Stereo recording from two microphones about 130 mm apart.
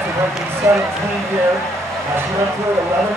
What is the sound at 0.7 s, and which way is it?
Speech, 15° right (ahead or behind).